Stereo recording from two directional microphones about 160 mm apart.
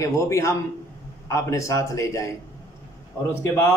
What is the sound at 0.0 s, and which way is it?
A man's voice, 20° left (ahead or behind).